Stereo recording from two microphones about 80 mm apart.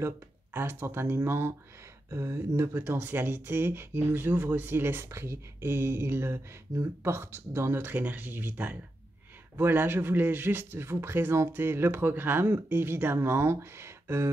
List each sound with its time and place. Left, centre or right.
0.5 s speech: right